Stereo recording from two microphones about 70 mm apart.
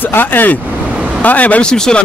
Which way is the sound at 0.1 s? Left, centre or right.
Left.